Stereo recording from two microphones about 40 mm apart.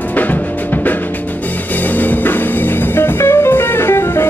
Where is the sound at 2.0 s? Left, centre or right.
Left.